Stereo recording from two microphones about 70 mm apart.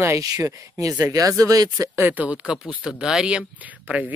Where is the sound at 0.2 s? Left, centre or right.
Right.